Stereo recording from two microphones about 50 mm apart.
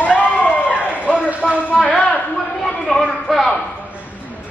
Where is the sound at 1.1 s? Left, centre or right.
Right.